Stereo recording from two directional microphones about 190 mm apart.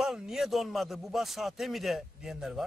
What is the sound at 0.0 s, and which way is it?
A man's voice, centre (ahead or behind).